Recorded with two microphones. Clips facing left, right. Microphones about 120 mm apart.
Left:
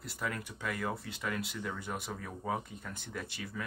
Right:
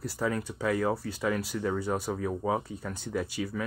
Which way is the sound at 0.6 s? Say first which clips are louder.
Right 9 dB; 40° right (ahead or behind).